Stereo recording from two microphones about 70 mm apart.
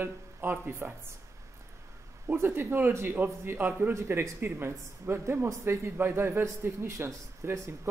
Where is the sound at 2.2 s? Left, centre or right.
Right.